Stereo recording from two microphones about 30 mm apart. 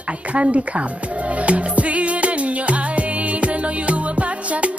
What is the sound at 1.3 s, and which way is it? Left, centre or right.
Music, right.